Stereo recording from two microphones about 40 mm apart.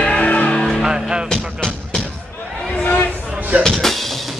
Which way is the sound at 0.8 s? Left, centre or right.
Centre.